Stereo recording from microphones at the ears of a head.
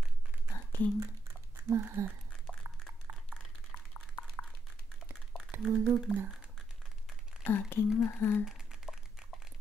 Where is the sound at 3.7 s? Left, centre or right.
Left.